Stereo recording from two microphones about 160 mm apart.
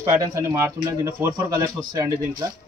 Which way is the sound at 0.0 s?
20° right (ahead or behind).